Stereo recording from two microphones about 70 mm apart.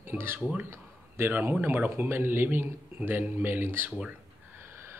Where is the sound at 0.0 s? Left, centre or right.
Right.